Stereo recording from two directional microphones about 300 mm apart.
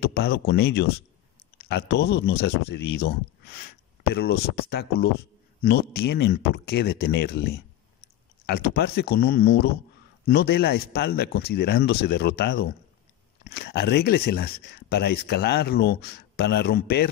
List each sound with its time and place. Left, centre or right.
0.0 s speech: left